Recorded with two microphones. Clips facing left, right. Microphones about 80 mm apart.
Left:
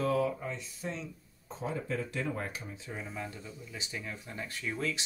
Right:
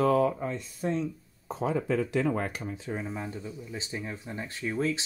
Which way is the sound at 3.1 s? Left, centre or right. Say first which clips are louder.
Right 5 dB; right.